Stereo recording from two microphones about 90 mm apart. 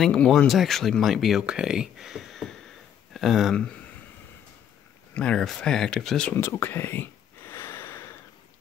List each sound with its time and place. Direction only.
0.0 s speech: 5° left (ahead or behind)
5.1 s speech: 10° left (ahead or behind)
6.3 s a sound: 30° left (ahead or behind)